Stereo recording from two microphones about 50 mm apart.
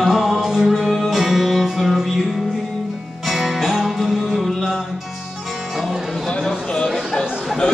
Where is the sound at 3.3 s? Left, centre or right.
Centre.